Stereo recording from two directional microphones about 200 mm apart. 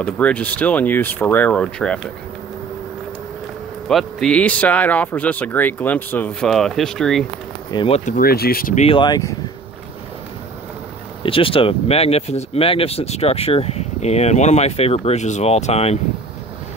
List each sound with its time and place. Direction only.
0.0 s speech: 5° left (ahead or behind)
3.9 s speech: 5° left (ahead or behind)
7.7 s speech: 25° left (ahead or behind)
8.0 s speech: 45° left (ahead or behind)
8.8 s speech: 25° left (ahead or behind)
11.2 s speech: 25° left (ahead or behind)